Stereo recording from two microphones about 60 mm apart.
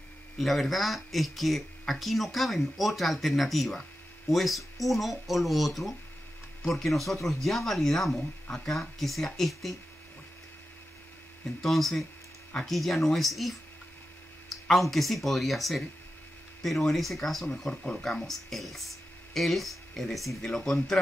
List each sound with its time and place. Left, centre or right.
0.4 s speech: centre
11.6 s speech: centre